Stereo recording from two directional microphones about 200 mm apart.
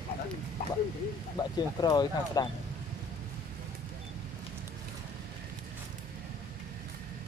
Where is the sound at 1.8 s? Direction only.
20° left (ahead or behind).